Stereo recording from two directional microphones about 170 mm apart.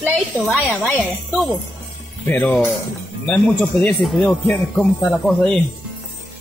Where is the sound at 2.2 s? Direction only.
10° left (ahead or behind).